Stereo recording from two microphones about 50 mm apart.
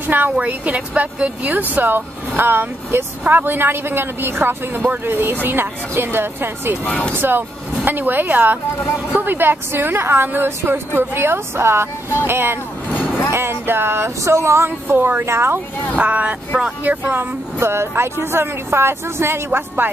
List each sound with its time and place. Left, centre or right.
0.0 s a woman's voice: right
0.4 s a woman's voice: right
6.8 s speech: left
7.2 s a woman's voice: right
12.9 s music: left
13.3 s a woman's voice: right
14.2 s speech: right
15.2 s speech: right
16.0 s speech: right
17.0 s speech: right